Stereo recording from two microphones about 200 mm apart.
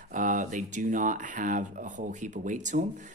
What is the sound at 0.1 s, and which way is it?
Speech, 40° right (ahead or behind).